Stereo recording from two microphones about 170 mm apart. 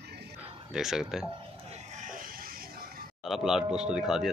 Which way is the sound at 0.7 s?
Centre (ahead or behind).